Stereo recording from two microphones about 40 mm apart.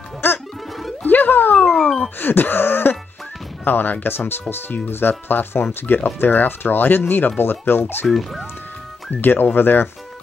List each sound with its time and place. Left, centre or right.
0.2 s music: left
1.0 s music: left
1.7 s music: centre
2.1 s speech: left
8.1 s speech: centre
9.2 s speech: left